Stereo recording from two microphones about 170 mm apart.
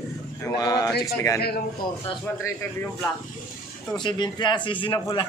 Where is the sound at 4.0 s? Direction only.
25° left (ahead or behind).